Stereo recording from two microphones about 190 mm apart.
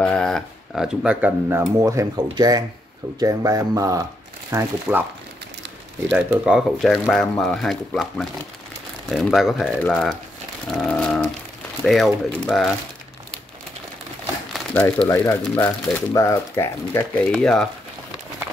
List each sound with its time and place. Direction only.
0.0 s speech: 5° left (ahead or behind); by 5.0 s 10° right (ahead or behind)
6.0 s speech: 5° right (ahead or behind)
10.7 s a sound: 5° left (ahead or behind)
11.8 s speech: centre (ahead or behind)
14.5 s speech: 5° left (ahead or behind)
17.3 s speech: 5° left (ahead or behind)